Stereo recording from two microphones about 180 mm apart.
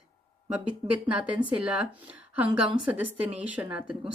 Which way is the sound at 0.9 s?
5° right (ahead or behind).